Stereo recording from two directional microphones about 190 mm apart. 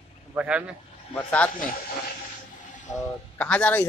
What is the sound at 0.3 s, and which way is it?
Speech, 5° right (ahead or behind).